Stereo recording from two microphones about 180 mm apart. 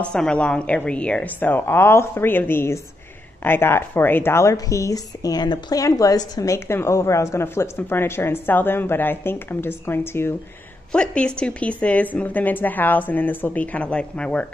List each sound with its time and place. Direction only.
0.0 s a woman's voice: 5° left (ahead or behind)